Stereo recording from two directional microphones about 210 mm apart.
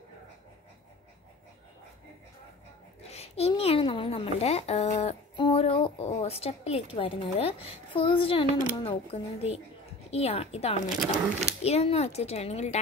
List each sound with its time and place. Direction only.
3.1 s a child's voice: 30° left (ahead or behind)